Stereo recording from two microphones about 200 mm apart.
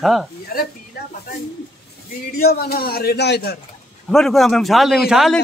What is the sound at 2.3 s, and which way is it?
Speech, 50° left (ahead or behind).